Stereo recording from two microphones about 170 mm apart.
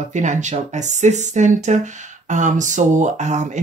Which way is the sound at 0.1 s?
45° right (ahead or behind).